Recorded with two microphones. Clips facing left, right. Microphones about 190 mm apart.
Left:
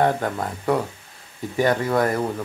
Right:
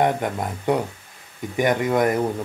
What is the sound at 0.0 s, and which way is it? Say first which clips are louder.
Speech: even; 15° right (ahead or behind).